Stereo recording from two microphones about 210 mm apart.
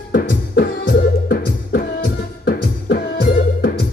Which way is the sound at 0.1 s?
45° left (ahead or behind).